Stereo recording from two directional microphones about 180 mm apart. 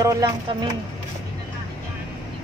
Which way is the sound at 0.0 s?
20° right (ahead or behind).